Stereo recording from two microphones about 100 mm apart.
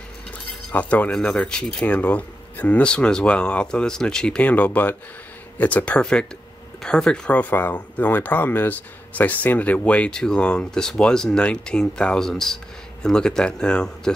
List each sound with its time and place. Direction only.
0.7 s speech: 15° left (ahead or behind)